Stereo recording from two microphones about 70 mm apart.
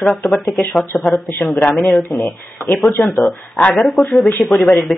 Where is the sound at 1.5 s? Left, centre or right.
Left.